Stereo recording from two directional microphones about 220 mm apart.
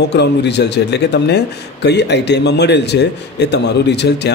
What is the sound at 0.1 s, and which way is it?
A man's voice, 50° left (ahead or behind).